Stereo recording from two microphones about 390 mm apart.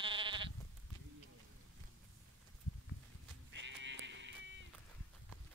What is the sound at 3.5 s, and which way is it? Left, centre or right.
Sheep, right.